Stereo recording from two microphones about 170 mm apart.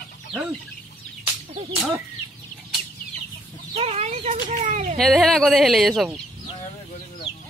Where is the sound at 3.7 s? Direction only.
35° right (ahead or behind).